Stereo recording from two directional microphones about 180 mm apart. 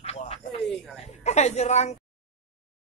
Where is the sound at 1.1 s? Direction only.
40° left (ahead or behind).